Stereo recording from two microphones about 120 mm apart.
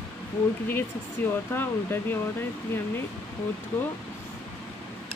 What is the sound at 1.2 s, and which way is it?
Speech, 15° left (ahead or behind).